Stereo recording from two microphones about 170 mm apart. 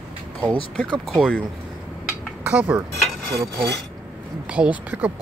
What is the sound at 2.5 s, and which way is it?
Speech, 10° right (ahead or behind).